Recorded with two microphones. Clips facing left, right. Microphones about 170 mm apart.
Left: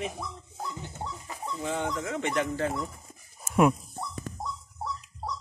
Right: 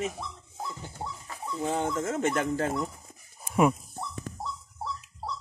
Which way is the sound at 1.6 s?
45° right (ahead or behind).